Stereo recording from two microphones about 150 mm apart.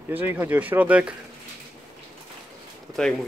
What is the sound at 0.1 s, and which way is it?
Speech, 10° right (ahead or behind).